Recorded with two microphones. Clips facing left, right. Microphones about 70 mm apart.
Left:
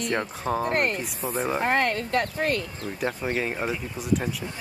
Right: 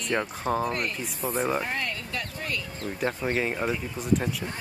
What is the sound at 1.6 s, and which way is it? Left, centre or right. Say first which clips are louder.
Speech: left 8 dB; left.